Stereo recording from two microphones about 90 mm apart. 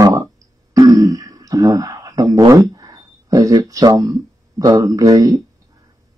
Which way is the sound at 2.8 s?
40° right (ahead or behind).